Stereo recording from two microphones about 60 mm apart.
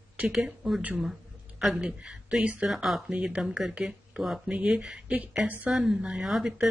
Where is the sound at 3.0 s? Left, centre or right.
Centre.